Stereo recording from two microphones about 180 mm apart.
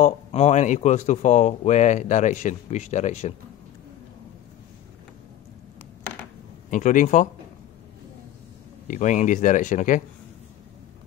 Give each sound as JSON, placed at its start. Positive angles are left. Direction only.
{"t": 0.0, "sound": "speech", "side_deg": 40}
{"t": 6.7, "sound": "speech", "side_deg": 45}
{"t": 8.8, "sound": "speech", "side_deg": 45}